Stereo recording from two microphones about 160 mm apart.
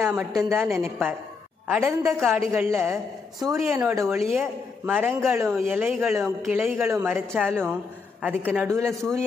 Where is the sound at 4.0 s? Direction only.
15° right (ahead or behind).